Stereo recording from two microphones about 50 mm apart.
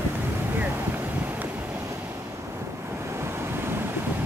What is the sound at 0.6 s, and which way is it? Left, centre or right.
Wind, right.